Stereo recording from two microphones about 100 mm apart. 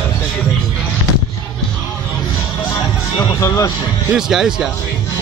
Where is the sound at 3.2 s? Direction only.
35° left (ahead or behind).